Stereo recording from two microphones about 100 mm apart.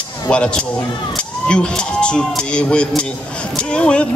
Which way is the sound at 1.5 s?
10° left (ahead or behind).